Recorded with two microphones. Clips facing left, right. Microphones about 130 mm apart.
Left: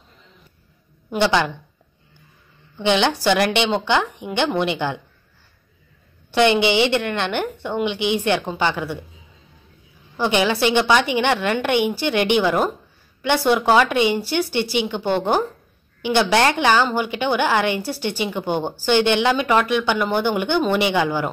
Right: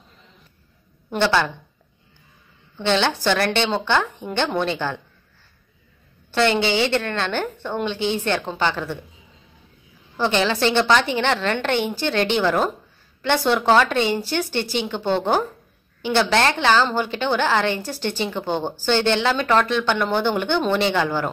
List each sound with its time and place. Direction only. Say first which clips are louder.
1.1 s a woman's voice: left 1 dB; 15° left (ahead or behind)
2.8 s a woman's voice: left 2 dB; 15° left (ahead or behind)
6.3 s a woman's voice: left 3 dB; 15° left (ahead or behind)
10.1 s a woman's voice: left 1 dB; 15° left (ahead or behind)